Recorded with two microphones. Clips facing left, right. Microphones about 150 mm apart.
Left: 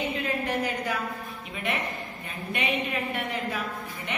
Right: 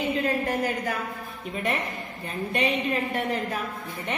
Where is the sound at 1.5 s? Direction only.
40° right (ahead or behind).